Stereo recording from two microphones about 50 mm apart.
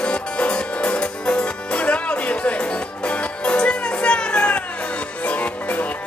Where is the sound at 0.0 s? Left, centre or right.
Left.